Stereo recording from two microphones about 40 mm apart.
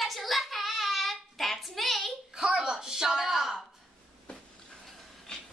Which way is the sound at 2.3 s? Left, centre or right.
Right.